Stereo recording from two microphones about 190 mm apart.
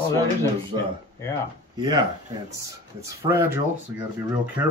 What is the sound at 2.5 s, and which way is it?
Speech, 15° right (ahead or behind).